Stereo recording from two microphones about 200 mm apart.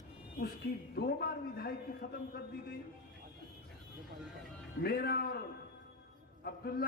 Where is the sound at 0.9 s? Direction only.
50° left (ahead or behind).